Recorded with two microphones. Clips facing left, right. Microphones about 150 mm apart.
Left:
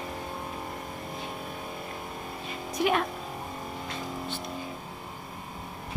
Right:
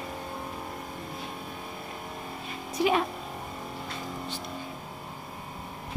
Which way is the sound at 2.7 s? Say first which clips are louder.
Right 1 dB; centre (ahead or behind).